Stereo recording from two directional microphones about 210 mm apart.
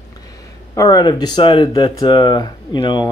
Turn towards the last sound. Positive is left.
turn(degrees=20)  # may be behind; listen again after turning